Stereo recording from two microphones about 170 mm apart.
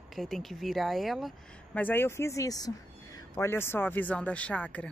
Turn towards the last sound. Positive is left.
turn(degrees=5)  # may be behind; listen again after turning